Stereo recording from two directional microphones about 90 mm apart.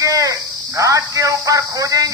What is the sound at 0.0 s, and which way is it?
Speech, 40° right (ahead or behind).